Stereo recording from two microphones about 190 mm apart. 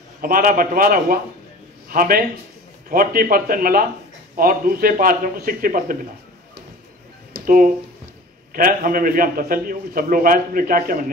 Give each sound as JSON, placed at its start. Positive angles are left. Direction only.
{"t": 0.2, "sound": "a man's voice", "side_deg": -50}
{"t": 7.3, "sound": "a sound", "side_deg": -50}
{"t": 8.5, "sound": "a man's voice", "side_deg": -50}